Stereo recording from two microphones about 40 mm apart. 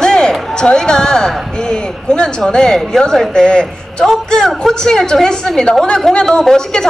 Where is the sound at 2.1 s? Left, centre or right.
Centre.